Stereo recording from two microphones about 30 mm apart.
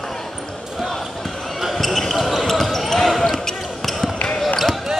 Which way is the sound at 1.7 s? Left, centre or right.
Centre.